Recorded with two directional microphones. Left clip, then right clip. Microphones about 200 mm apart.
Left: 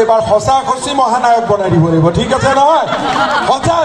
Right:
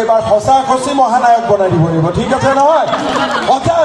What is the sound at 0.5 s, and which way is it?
A man's voice, 35° right (ahead or behind).